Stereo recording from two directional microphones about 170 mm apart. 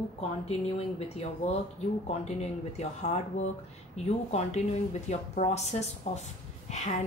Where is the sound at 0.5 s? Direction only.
35° left (ahead or behind).